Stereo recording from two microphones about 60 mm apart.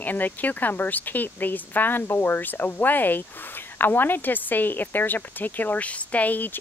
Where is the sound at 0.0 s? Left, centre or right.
Left.